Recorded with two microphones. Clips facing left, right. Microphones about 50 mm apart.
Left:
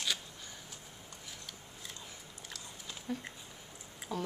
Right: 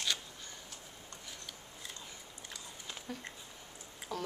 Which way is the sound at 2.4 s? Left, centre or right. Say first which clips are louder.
Even; centre.